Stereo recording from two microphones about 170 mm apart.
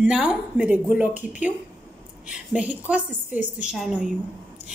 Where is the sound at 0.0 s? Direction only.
5° right (ahead or behind).